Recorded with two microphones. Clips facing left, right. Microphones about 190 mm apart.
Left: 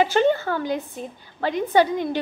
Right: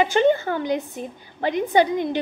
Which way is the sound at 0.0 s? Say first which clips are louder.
Right 1 dB; 15° right (ahead or behind).